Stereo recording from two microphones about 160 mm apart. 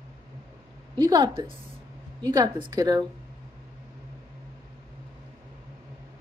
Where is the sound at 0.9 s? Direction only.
30° right (ahead or behind).